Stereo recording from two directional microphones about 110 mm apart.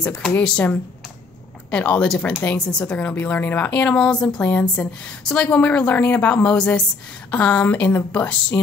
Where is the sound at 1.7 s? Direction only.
10° left (ahead or behind).